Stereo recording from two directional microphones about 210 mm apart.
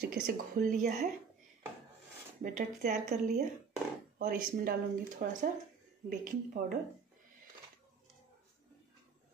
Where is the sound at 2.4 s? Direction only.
40° right (ahead or behind).